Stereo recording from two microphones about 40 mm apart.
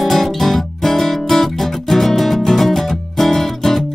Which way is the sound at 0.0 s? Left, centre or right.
Centre.